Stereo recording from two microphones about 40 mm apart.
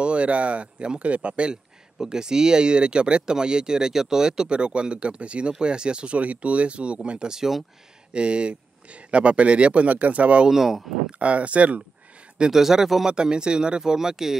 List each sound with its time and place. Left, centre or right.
0.0 s speech: right
2.0 s speech: centre
7.3 s speech: centre
8.1 s speech: right
10.5 s speech: centre
11.1 s speech: right
12.4 s speech: centre
13.1 s speech: right